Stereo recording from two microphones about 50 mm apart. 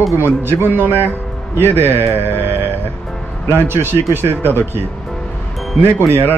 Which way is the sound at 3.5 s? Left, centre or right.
Right.